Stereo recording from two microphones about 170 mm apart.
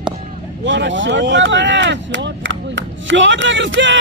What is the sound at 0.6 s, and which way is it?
Speech, 90° right.